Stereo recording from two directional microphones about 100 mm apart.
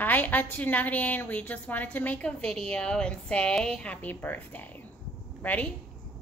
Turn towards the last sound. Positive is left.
turn(degrees=15)  # may be behind; listen again after turning